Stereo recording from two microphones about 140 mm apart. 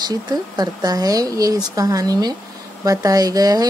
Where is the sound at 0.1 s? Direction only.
30° right (ahead or behind).